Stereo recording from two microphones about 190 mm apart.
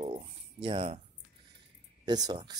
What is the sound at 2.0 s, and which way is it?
Speech, 20° right (ahead or behind).